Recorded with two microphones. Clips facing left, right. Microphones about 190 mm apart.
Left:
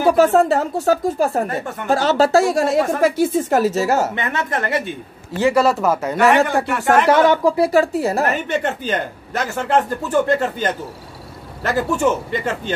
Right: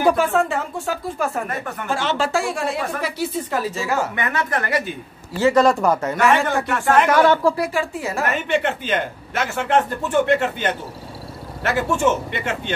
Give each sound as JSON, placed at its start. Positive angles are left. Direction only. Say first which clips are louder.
{"t": 0.2, "sound": "a woman's voice", "louder": "left 6 dB", "side_deg": 40}
{"t": 4.1, "sound": "a woman's voice", "louder": "left 1 dB", "side_deg": 25}
{"t": 5.4, "sound": "a woman's voice", "louder": "even", "side_deg": 5}
{"t": 7.6, "sound": "a woman's voice", "louder": "left 8 dB", "side_deg": 40}